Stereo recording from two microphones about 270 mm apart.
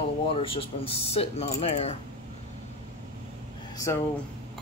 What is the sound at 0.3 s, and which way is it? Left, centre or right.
Speech, centre.